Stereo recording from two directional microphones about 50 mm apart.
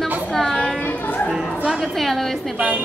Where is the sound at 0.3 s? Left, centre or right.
Centre.